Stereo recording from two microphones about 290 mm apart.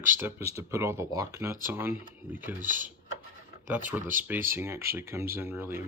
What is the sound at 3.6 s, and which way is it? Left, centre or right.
Speech, centre.